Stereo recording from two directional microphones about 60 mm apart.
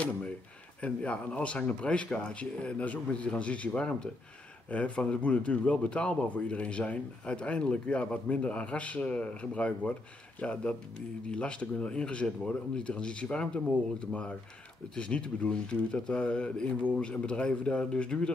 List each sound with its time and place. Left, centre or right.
0.7 s speech: left